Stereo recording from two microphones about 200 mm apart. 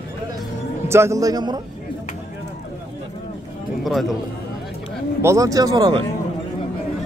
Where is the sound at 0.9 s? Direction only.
15° right (ahead or behind).